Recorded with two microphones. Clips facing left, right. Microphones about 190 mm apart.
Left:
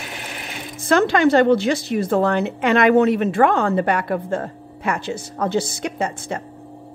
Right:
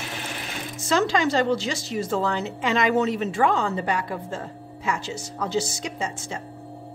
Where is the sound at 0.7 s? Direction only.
55° left (ahead or behind).